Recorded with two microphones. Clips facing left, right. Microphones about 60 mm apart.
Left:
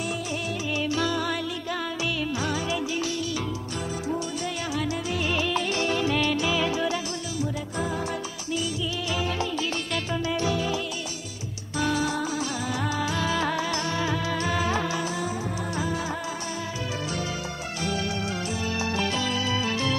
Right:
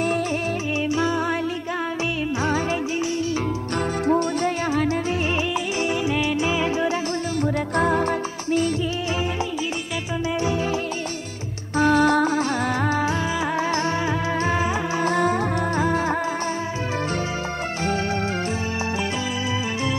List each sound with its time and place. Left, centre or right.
0.8 s music: right
2.4 s music: right
4.1 s music: right
5.5 s music: centre
7.7 s music: right
10.4 s music: right
11.7 s music: right
13.6 s music: right
15.0 s music: right